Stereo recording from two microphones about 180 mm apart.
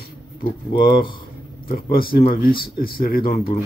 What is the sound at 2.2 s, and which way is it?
Speech, 30° left (ahead or behind).